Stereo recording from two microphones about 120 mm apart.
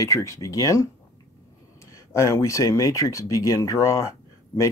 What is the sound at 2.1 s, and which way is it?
Speech, 25° left (ahead or behind).